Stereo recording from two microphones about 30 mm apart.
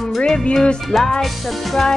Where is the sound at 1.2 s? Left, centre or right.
Centre.